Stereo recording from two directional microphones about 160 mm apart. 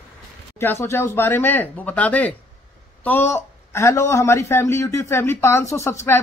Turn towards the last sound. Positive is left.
turn(degrees=15)  # may be behind; listen again after turning